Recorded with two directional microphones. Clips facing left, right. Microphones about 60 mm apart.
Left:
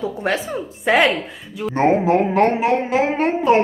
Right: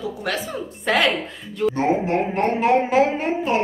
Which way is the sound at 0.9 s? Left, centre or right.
Centre.